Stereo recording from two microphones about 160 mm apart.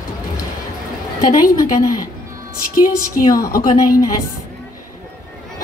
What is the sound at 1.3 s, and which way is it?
Speech, 25° left (ahead or behind).